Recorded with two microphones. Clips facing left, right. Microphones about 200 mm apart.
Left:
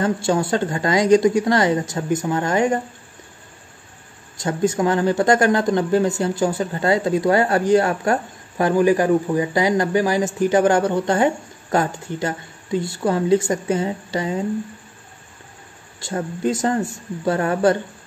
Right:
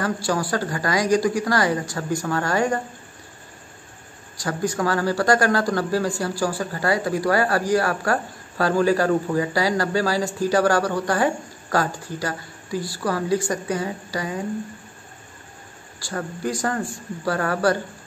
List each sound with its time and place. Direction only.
0.0 s a man's voice: 25° left (ahead or behind)
4.4 s a man's voice: 25° left (ahead or behind)
16.0 s a man's voice: 25° left (ahead or behind)